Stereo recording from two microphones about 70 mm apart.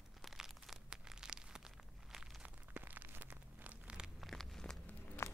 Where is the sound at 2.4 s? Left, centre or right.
Right.